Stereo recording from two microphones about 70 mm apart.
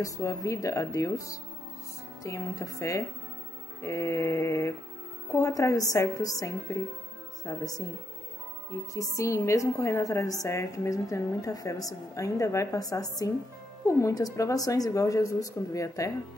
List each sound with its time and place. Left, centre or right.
0.0 s a woman's voice: left
8.9 s a woman's voice: left
13.8 s a woman's voice: left
14.1 s a woman's voice: left